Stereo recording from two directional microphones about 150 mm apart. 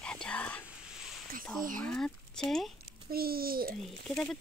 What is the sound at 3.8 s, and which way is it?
Speech, centre (ahead or behind).